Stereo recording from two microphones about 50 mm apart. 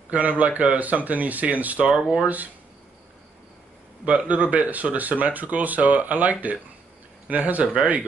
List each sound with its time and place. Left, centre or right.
0.1 s speech: right
4.0 s speech: right